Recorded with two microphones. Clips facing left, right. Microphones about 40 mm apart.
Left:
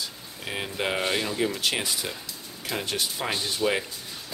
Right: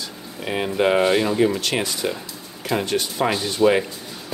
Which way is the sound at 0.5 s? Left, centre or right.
Centre.